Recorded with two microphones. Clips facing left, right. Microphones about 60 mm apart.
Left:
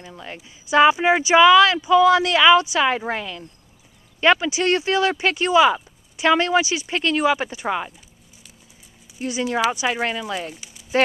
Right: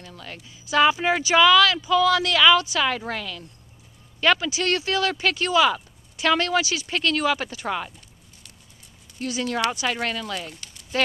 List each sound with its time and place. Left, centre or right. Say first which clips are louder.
0.0 s speech: left 3 dB; left
9.2 s speech: left 3 dB; centre
10.6 s a sound: even; centre